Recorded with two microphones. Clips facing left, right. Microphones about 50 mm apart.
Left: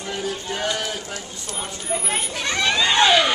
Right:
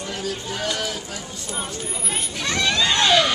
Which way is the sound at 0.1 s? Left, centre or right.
Centre.